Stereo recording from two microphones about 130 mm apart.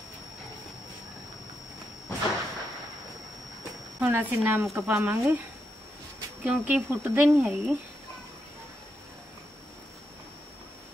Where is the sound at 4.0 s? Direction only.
15° right (ahead or behind).